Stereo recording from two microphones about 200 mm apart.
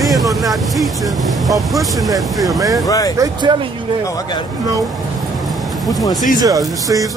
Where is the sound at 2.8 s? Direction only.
20° left (ahead or behind).